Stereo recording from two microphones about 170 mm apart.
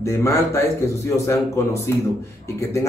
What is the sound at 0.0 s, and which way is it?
Speech, 15° left (ahead or behind).